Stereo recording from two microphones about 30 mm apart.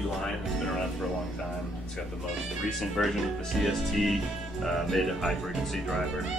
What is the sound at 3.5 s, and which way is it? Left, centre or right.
Speech, centre.